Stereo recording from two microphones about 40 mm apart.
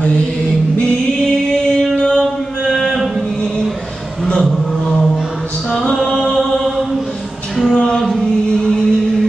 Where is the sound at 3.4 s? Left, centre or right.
Centre.